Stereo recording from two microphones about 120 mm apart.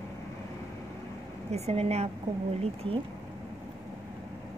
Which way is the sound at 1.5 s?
65° right (ahead or behind).